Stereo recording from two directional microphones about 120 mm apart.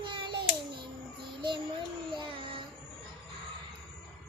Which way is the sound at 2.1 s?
45° right (ahead or behind).